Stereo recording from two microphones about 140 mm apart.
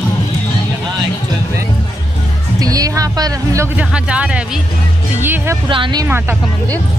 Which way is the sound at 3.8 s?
5° right (ahead or behind).